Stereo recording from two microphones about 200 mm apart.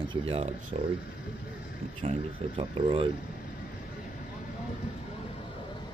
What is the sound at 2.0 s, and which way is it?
Speech, 30° right (ahead or behind).